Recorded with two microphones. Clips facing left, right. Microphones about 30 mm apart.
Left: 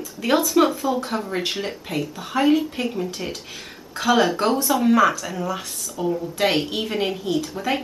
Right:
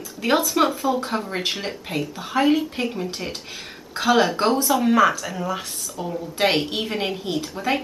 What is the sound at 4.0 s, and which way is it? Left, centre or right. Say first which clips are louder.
Speech: even; centre.